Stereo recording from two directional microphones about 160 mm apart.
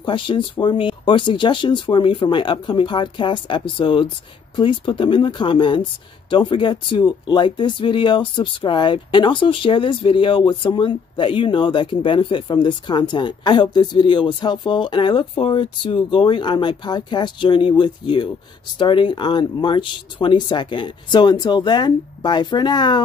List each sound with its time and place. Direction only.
0.0 s speech: 30° left (ahead or behind)